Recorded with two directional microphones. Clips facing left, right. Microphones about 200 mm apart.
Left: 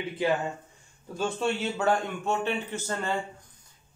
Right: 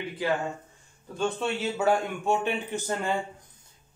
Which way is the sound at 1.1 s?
Centre (ahead or behind).